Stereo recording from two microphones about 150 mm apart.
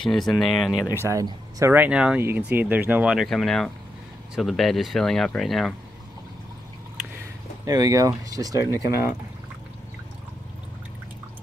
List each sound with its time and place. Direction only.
0.0 s speech: centre (ahead or behind)
0.8 s speech: 20° left (ahead or behind)
1.1 s speech: 20° right (ahead or behind); by 5.8 s centre (ahead or behind)
7.6 s speech: 25° right (ahead or behind)